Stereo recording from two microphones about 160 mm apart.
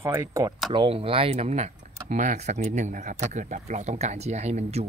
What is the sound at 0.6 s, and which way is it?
Speech, 35° right (ahead or behind).